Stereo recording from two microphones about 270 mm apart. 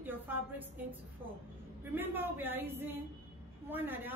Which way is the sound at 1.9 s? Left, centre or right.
Centre.